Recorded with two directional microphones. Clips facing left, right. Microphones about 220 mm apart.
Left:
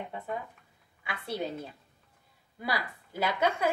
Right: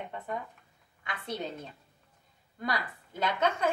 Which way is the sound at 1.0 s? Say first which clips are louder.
Left 2 dB; 10° left (ahead or behind).